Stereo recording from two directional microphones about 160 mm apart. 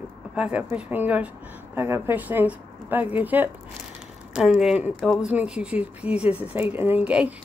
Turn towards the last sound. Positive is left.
turn(degrees=-10)  # may be behind; listen again after turning